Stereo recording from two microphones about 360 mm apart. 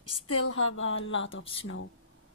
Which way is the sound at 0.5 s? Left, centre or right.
Left.